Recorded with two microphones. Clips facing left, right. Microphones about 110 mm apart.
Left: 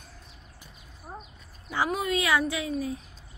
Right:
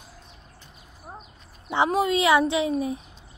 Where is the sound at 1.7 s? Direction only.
25° right (ahead or behind).